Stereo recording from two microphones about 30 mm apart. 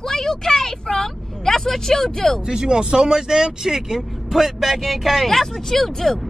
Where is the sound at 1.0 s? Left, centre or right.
Centre.